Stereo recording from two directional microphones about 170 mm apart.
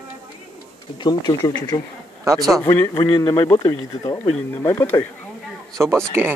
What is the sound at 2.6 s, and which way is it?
Speech, 15° left (ahead or behind).